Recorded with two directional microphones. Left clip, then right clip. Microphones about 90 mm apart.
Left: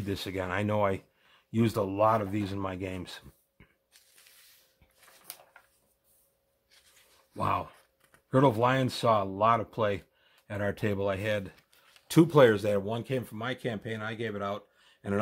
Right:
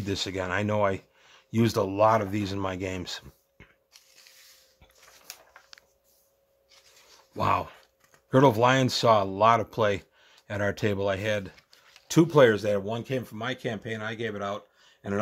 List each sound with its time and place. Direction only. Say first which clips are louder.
0.0 s speech: right 4 dB; 15° right (ahead or behind)
1.3 s speech: right 3 dB; 25° right (ahead or behind)
7.3 s speech: right 4 dB; 30° right (ahead or behind); by 11.5 s 10° right (ahead or behind)
12.1 s speech: right 2 dB; 5° left (ahead or behind)